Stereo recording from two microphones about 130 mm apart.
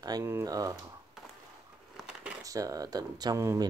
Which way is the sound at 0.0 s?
30° right (ahead or behind).